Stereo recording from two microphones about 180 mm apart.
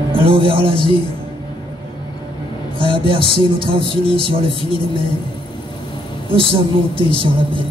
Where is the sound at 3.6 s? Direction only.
30° right (ahead or behind).